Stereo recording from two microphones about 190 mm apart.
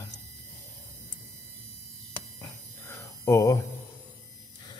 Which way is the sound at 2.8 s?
15° left (ahead or behind).